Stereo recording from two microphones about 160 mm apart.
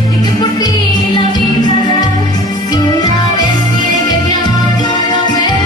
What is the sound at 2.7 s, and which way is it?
Music, 25° left (ahead or behind).